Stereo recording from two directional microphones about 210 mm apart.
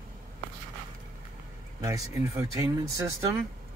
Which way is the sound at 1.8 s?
15° right (ahead or behind).